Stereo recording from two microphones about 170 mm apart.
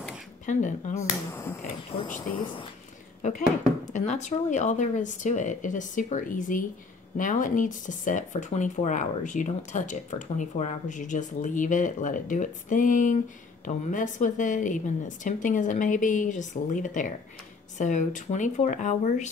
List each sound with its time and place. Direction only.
0.5 s speech: 45° left (ahead or behind)
0.9 s speech: 15° left (ahead or behind)
1.6 s speech: 40° left (ahead or behind)
3.9 s speech: 45° left (ahead or behind)